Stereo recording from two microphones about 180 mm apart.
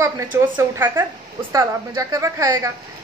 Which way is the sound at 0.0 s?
15° right (ahead or behind).